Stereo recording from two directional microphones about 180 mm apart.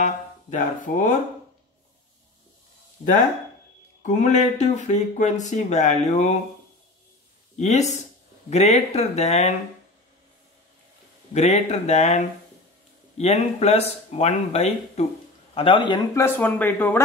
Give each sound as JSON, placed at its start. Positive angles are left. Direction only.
{"t": 0.0, "sound": "speech", "side_deg": 45}
{"t": 4.0, "sound": "speech", "side_deg": 40}
{"t": 7.5, "sound": "speech", "side_deg": 40}
{"t": 11.3, "sound": "a man's voice", "side_deg": 35}
{"t": 16.2, "sound": "speech", "side_deg": 10}